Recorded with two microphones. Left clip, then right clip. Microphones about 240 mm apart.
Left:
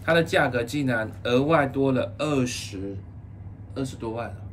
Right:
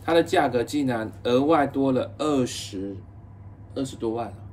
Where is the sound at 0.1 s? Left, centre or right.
Centre.